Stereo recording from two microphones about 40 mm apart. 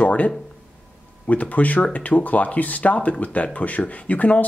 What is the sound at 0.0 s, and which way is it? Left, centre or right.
Speech, left.